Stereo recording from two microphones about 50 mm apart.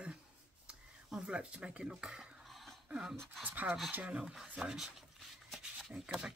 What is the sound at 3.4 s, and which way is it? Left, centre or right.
Speech, right.